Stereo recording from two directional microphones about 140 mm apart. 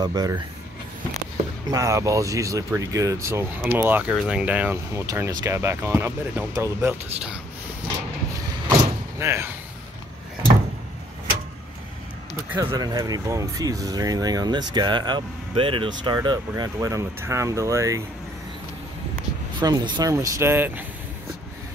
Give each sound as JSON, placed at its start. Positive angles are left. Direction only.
{"t": 0.0, "sound": "speech", "side_deg": -25}
{"t": 1.7, "sound": "speech", "side_deg": -25}
{"t": 9.2, "sound": "speech", "side_deg": -20}
{"t": 12.5, "sound": "speech", "side_deg": -25}
{"t": 19.6, "sound": "speech", "side_deg": -30}